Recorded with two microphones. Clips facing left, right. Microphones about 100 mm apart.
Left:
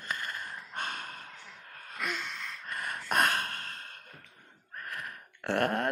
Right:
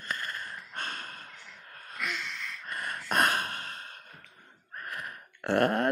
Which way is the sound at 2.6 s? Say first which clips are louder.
Right 1 dB; centre (ahead or behind).